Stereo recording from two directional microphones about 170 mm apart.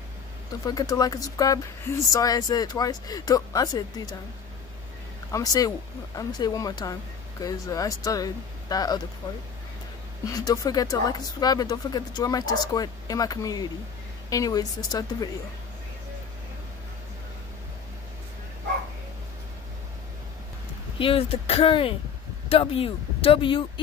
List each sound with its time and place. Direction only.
0.7 s speech: 20° left (ahead or behind)
5.3 s speech: 20° left (ahead or behind)
10.2 s speech: 20° left (ahead or behind)
21.0 s speech: 30° left (ahead or behind)